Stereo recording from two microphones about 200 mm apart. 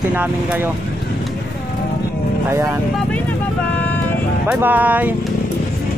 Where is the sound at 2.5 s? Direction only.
15° right (ahead or behind).